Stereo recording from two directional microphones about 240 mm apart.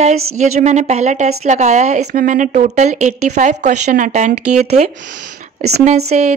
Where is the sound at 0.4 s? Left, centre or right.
Right.